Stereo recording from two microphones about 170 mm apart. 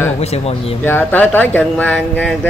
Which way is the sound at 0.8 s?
10° left (ahead or behind).